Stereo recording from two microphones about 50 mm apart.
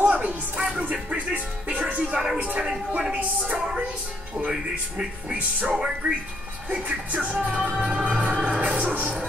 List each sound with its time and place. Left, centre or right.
0.0 s music: right
2.3 s a sound: right
3.0 s music: right
4.5 s speech: centre
6.7 s music: right
7.8 s music: centre; by 9.1 s right